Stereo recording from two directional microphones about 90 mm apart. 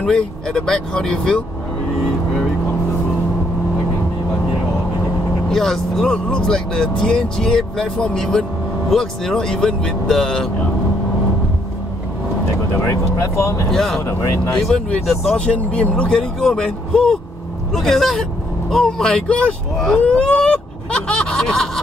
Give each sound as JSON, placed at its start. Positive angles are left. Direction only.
{"t": 0.0, "sound": "speech", "side_deg": 5}
{"t": 5.5, "sound": "speech", "side_deg": 5}
{"t": 12.9, "sound": "speech", "side_deg": 35}
{"t": 13.7, "sound": "speech", "side_deg": 5}
{"t": 14.0, "sound": "speech", "side_deg": 35}
{"t": 14.6, "sound": "speech", "side_deg": 5}
{"t": 20.0, "sound": "a sound", "side_deg": 10}